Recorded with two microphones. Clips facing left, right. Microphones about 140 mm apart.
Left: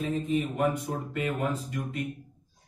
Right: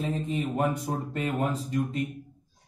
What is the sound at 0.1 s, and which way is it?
Speech, 30° right (ahead or behind).